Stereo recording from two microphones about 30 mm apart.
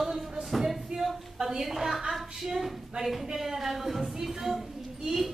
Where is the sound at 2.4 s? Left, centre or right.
Centre.